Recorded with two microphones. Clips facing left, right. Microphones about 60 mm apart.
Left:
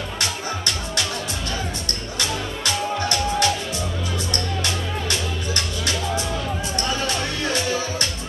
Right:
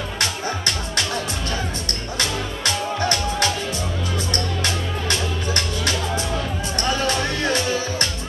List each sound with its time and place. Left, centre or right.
2.1 s music: right